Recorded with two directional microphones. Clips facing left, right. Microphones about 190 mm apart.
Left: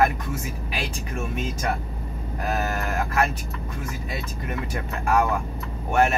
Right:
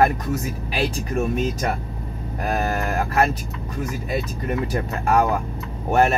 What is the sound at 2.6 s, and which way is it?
Speech, 35° right (ahead or behind).